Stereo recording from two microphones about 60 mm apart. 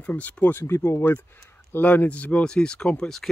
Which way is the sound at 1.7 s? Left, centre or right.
Left.